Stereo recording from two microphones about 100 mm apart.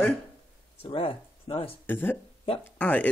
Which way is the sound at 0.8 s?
65° left (ahead or behind).